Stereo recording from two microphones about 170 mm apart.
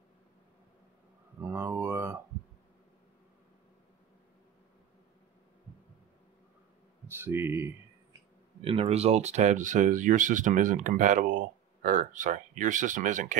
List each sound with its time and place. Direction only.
1.5 s a sound: 15° right (ahead or behind)
7.1 s speech: 15° right (ahead or behind)
8.5 s speech: 35° right (ahead or behind)